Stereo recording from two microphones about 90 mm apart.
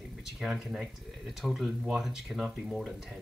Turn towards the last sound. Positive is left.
turn(degrees=-5)  # may be behind; listen again after turning